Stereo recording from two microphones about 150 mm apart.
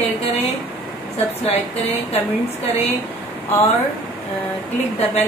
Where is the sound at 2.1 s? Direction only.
45° left (ahead or behind).